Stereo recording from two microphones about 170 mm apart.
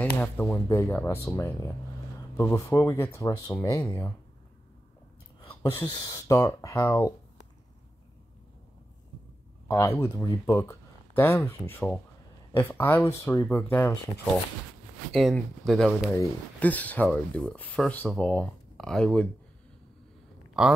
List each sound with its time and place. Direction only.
0.2 s speech: 10° left (ahead or behind)
5.6 s speech: 20° left (ahead or behind)
9.7 s speech: 15° left (ahead or behind)
15.1 s speech: centre (ahead or behind)